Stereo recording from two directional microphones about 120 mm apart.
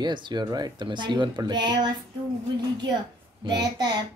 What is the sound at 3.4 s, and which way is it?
Speech, 35° right (ahead or behind).